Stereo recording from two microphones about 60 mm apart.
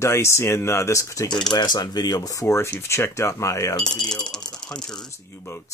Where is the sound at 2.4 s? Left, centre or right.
Left.